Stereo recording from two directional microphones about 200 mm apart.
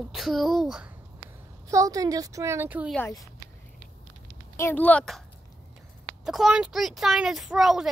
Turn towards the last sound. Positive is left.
turn(degrees=0)  # may be behind; listen again after turning